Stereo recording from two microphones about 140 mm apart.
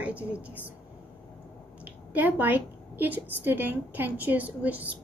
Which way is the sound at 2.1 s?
10° right (ahead or behind).